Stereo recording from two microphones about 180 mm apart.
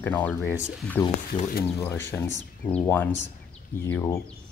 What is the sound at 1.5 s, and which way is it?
Speech, 65° left (ahead or behind).